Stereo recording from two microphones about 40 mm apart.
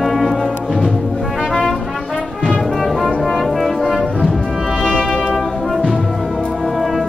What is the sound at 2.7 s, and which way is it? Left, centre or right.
Music, centre.